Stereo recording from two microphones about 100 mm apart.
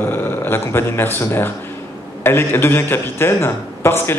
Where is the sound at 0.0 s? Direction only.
20° left (ahead or behind).